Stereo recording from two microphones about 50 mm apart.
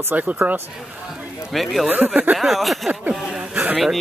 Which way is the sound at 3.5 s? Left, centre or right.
Right.